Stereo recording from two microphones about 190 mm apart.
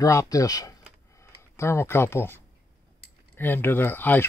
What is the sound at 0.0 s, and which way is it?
Speech, 15° left (ahead or behind).